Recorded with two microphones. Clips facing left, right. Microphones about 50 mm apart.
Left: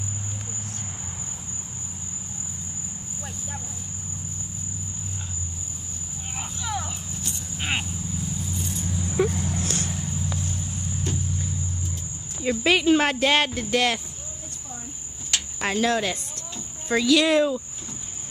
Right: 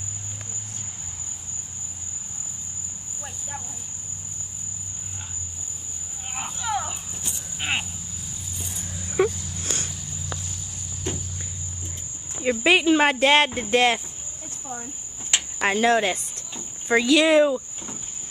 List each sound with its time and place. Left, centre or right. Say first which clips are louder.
6.3 s a sound: right 4 dB; centre
8.5 s keys jangling: left 6 dB; centre
9.3 s dog: left 9 dB; left
11.1 s walk: right 1 dB; right
12.4 s speech: right 2 dB; centre
15.3 s cricket: right 3 dB; right